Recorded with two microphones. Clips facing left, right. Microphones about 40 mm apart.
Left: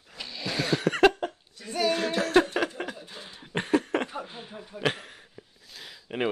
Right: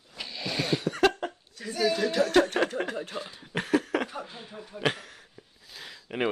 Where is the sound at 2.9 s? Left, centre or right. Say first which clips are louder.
Right 5 dB; right.